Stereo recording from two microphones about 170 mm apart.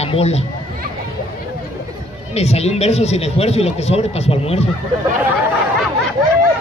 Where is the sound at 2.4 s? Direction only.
40° left (ahead or behind).